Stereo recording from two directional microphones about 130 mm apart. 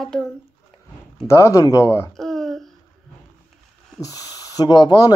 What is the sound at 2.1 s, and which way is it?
Babbling, centre (ahead or behind).